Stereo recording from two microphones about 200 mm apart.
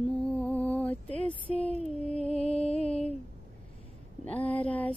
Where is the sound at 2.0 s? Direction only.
5° left (ahead or behind).